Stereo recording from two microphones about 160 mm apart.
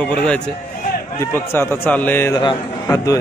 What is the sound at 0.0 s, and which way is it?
A man's voice, 5° left (ahead or behind).